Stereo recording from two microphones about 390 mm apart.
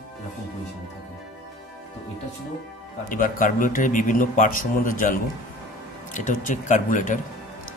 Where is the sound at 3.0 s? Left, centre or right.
Centre.